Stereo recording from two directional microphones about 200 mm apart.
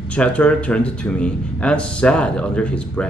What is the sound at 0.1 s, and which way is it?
Speech, 5° left (ahead or behind).